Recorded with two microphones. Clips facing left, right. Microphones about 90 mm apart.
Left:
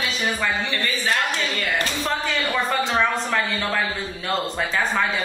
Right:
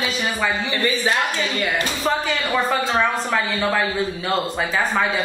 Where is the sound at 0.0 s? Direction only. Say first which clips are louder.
Right 2 dB; 5° right (ahead or behind).